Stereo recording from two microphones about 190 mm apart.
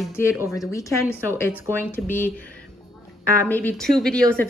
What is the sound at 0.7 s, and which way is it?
A woman's voice, 15° left (ahead or behind).